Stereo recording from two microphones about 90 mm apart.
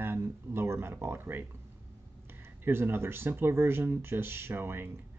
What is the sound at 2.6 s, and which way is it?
Speech, 25° right (ahead or behind).